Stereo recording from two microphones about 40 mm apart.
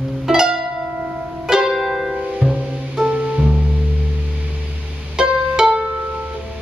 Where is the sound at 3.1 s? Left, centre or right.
Right.